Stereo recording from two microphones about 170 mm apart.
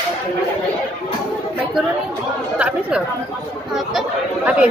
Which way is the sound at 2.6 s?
5° right (ahead or behind).